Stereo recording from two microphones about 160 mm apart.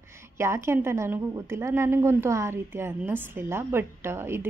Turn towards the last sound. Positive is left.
turn(degrees=-15)  # may be behind; listen again after turning